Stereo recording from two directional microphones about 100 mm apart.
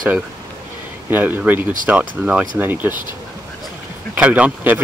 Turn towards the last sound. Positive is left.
turn(degrees=-15)  # may be behind; listen again after turning